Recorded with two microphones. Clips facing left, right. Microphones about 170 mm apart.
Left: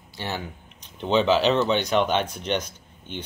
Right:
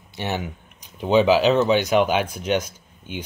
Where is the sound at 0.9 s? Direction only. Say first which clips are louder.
Right 4 dB; 10° right (ahead or behind).